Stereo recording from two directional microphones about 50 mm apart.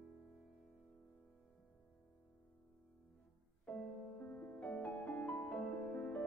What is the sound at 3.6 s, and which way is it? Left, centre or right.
Music, left.